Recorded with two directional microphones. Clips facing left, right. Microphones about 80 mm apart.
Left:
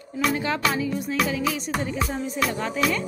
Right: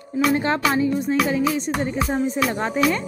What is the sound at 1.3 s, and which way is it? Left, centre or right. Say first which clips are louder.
Music: right 5 dB; right.